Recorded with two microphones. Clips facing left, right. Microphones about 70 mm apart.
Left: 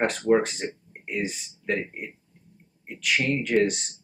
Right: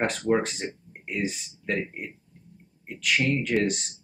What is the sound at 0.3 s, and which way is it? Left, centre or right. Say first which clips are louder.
Speech: left 4 dB; centre.